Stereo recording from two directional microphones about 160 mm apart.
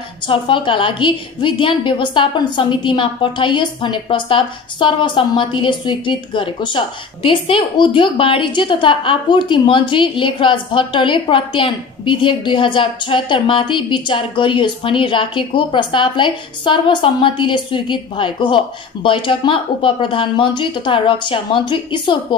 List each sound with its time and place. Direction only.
0.3 s a woman's voice: 30° left (ahead or behind)